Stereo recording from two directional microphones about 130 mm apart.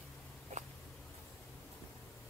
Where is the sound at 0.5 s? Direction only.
60° right (ahead or behind).